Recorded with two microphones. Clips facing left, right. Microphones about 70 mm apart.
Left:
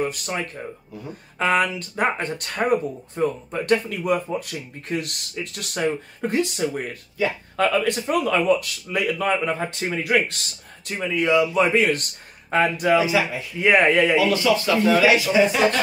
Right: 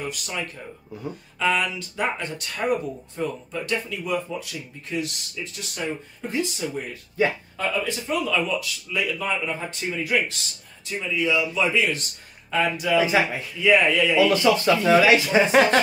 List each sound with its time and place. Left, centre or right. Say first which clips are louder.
0.0 s speech: left 5 dB; left
7.5 s speech: left 6 dB; left
13.0 s speech: even; right
13.6 s speech: left 2 dB; left
14.3 s speech: right 1 dB; right